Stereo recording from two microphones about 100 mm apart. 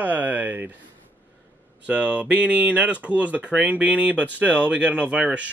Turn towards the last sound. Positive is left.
turn(degrees=-10)  # may be behind; listen again after turning